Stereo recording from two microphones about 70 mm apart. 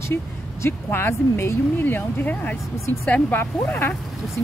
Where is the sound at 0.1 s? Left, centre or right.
Left.